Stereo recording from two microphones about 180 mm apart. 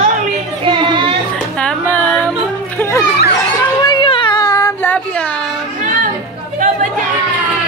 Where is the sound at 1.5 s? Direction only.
5° left (ahead or behind).